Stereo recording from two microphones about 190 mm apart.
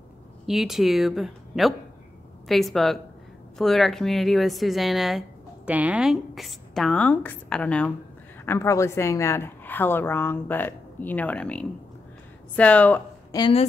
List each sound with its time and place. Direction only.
0.5 s a woman's voice: centre (ahead or behind)
13.3 s a woman's voice: 25° left (ahead or behind)